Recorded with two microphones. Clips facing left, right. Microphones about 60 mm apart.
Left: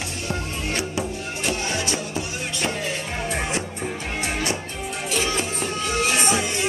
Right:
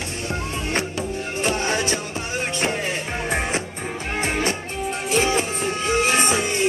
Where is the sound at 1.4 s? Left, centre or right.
Right.